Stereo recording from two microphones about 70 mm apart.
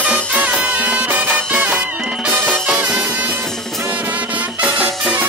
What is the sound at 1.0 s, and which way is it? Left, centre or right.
Music, right.